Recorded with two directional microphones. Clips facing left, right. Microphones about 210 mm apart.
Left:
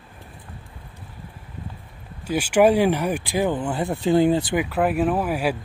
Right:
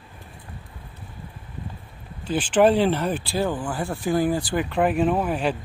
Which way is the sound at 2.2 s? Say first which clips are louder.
Left 1 dB; 10° left (ahead or behind).